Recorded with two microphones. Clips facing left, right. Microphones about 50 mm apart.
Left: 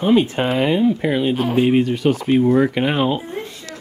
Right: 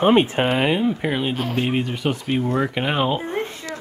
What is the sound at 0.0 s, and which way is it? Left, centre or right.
Speech, right.